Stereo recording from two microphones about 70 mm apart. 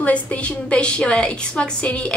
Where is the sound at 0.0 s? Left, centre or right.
Centre.